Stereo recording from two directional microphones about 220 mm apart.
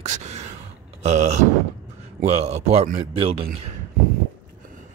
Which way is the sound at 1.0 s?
30° right (ahead or behind).